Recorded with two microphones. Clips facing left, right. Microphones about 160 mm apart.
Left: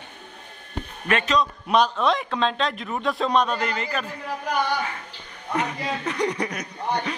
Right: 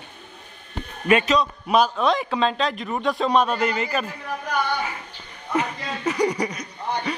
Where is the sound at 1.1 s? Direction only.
10° right (ahead or behind).